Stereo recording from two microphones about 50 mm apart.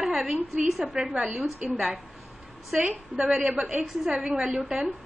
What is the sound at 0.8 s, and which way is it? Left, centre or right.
Speech, centre.